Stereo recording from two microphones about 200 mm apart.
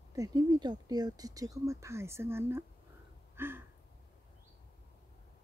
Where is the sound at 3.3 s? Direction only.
10° right (ahead or behind).